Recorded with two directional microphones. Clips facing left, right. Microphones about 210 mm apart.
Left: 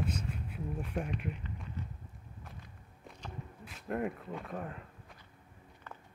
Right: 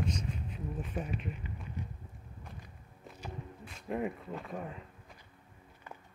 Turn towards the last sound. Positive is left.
turn(degrees=0)  # may be behind; listen again after turning